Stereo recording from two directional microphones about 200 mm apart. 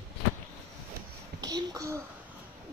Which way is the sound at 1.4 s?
20° right (ahead or behind).